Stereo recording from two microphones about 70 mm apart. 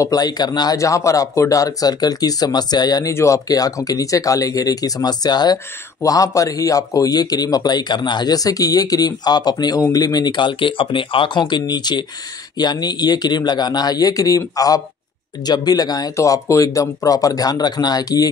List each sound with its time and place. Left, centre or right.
0.1 s speech: left
3.1 s speech: left
3.4 s speech: left
6.0 s speech: left
12.5 s speech: left
15.4 s speech: left
16.2 s speech: left